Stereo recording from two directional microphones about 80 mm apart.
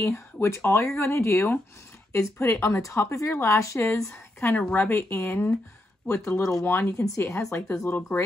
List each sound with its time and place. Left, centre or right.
0.0 s a woman's voice: left
4.4 s a woman's voice: left